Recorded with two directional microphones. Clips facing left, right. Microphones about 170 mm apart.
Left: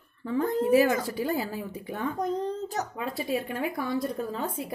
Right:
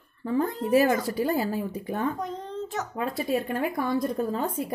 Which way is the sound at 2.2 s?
40° left (ahead or behind).